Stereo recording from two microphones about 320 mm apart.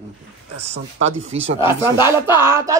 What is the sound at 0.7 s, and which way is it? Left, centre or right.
Speech, centre.